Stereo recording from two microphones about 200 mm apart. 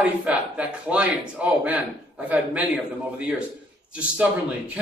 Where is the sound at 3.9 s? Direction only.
5° right (ahead or behind).